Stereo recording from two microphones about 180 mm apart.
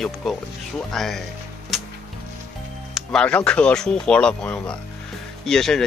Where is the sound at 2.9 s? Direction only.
5° left (ahead or behind).